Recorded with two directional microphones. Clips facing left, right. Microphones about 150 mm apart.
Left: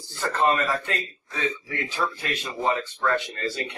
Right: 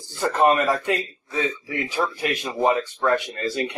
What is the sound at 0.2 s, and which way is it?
Speech, 15° right (ahead or behind).